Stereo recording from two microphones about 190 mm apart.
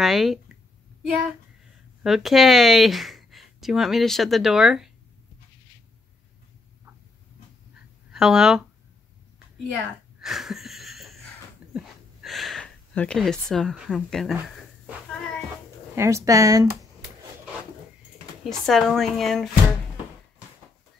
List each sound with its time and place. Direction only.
0.0 s speech: centre (ahead or behind)
2.0 s speech: centre (ahead or behind)
8.1 s speech: 5° right (ahead or behind)
10.2 s a sound: centre (ahead or behind)
16.0 s speech: 15° right (ahead or behind)
18.4 s speech: centre (ahead or behind)